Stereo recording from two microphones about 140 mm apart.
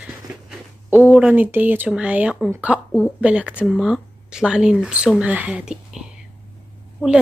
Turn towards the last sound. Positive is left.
turn(degrees=0)  # may be behind; listen again after turning